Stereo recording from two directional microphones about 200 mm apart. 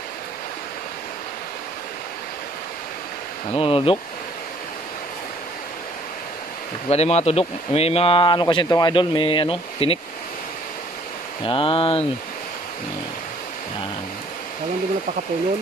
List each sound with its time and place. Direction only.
3.5 s speech: 25° left (ahead or behind)
6.9 s speech: 30° left (ahead or behind)
11.4 s speech: 25° left (ahead or behind)